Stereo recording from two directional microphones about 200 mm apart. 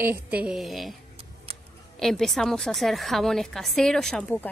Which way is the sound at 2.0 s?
Centre (ahead or behind).